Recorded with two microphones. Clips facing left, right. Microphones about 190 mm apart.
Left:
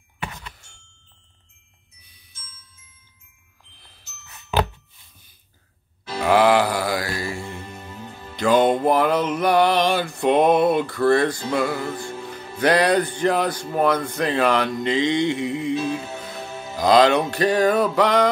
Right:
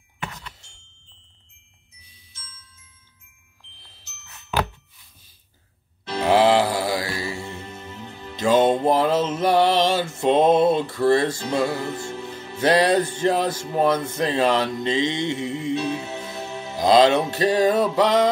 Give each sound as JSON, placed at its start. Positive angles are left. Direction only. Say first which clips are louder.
{"t": 4.3, "sound": "music", "louder": "left 2 dB", "side_deg": 15}
{"t": 6.2, "sound": "music", "louder": "even", "side_deg": -25}